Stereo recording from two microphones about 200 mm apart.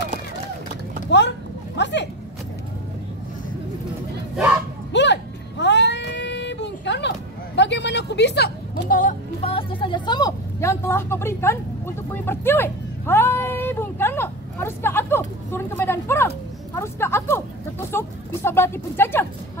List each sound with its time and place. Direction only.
1.1 s speech: 60° left (ahead or behind)
1.8 s vehicle: 60° left (ahead or behind)
4.9 s a sound: 60° left (ahead or behind)
8.9 s music: 35° left (ahead or behind); by 11.5 s 10° left (ahead or behind)
12.1 s a sound: 10° left (ahead or behind)
16.7 s vehicle: 10° left (ahead or behind)